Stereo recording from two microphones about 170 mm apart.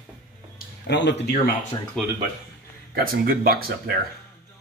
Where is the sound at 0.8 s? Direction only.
90° left.